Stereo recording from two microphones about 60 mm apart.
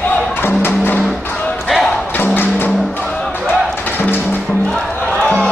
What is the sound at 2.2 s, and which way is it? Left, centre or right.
Music, left.